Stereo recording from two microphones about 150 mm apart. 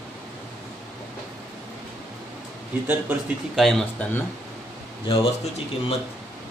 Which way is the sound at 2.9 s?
15° right (ahead or behind).